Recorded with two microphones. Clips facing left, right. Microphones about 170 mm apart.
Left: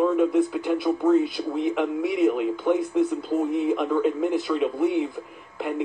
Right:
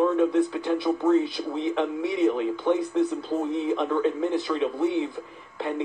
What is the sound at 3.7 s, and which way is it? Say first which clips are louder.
Speech: right 1 dB; 10° left (ahead or behind).